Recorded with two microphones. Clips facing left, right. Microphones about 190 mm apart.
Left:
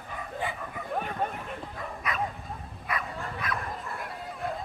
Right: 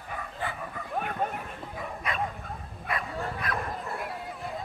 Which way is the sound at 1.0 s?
5° right (ahead or behind).